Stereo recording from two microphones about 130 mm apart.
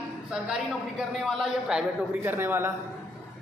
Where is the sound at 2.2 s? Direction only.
15° right (ahead or behind).